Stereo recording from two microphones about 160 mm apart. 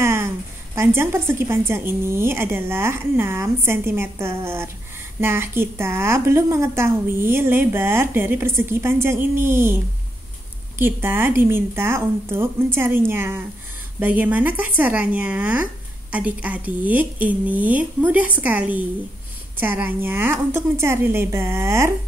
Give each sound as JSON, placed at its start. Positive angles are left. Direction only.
{"t": 0.0, "sound": "a sound", "side_deg": -15}
{"t": 0.7, "sound": "speech", "side_deg": -15}
{"t": 10.8, "sound": "speech", "side_deg": -15}